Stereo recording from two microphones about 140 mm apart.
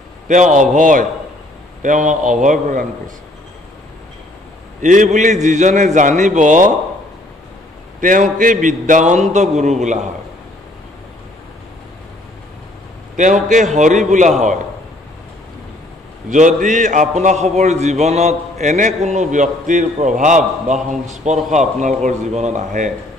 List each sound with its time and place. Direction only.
0.3 s a man's voice: 60° right (ahead or behind)
4.8 s a man's voice: 60° right (ahead or behind)
8.0 s a man's voice: 70° right (ahead or behind); by 9.9 s 55° right (ahead or behind)
13.1 s a man's voice: 60° right (ahead or behind)
16.3 s a man's voice: 65° right (ahead or behind)